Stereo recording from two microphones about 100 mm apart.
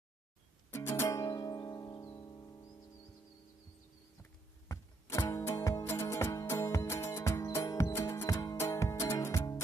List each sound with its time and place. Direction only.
0.7 s music: 30° left (ahead or behind)
4.6 s music: 30° left (ahead or behind)